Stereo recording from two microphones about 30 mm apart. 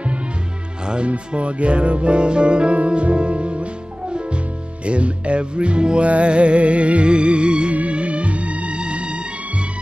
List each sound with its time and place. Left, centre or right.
0.8 s speech: right
4.8 s speech: right
7.7 s music: right